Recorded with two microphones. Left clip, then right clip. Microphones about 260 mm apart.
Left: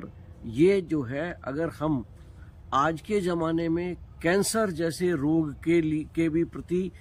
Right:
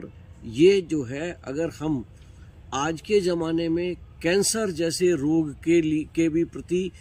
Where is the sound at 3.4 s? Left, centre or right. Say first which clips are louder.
Right 2 dB; centre.